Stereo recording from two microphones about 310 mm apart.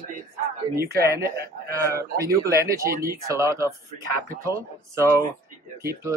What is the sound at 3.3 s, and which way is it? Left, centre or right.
Speech, centre.